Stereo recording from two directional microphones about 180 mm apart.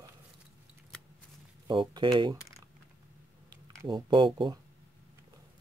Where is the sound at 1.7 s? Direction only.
25° right (ahead or behind).